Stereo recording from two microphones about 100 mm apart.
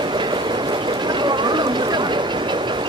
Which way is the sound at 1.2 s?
50° right (ahead or behind).